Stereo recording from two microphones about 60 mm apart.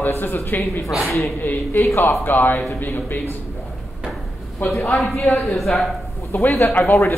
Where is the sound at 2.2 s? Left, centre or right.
Left.